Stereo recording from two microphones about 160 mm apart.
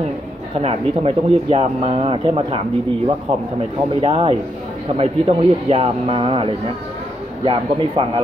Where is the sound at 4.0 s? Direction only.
35° right (ahead or behind).